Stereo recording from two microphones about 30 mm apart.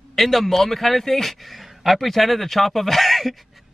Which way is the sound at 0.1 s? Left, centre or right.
Centre.